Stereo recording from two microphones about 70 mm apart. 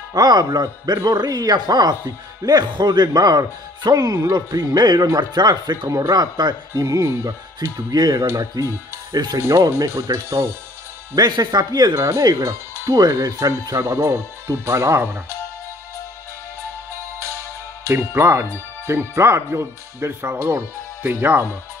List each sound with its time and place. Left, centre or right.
0.1 s speech: right
5.9 s speech: right
6.1 s a man's voice: right
6.7 s speech: right
8.3 s speech: right
11.1 s a man's voice: right
11.9 s speech: right
17.8 s speech: right